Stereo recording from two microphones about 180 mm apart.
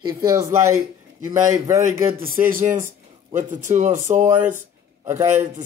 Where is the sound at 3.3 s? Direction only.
45° right (ahead or behind).